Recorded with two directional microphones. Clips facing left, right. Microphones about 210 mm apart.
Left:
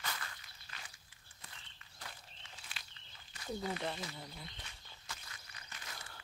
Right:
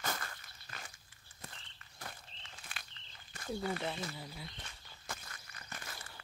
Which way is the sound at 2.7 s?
50° right (ahead or behind).